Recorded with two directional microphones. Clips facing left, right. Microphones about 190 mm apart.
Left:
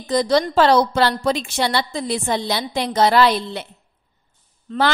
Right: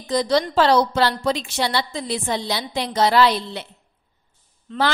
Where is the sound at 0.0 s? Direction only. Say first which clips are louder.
Left 2 dB; 50° left (ahead or behind).